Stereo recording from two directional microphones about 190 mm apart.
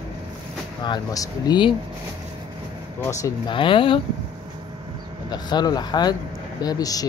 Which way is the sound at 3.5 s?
25° left (ahead or behind).